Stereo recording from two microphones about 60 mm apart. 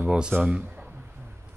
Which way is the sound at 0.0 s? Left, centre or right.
Right.